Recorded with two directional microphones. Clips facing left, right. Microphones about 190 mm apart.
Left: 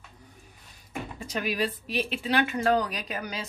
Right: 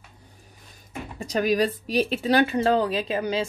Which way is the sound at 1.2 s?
40° right (ahead or behind).